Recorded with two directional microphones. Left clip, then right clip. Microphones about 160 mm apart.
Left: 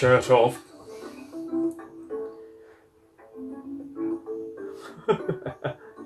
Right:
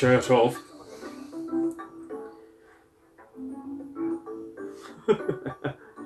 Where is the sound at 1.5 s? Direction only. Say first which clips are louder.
Left 1 dB; 20° right (ahead or behind).